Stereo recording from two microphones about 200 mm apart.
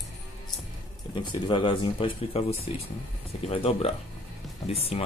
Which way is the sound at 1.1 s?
25° left (ahead or behind).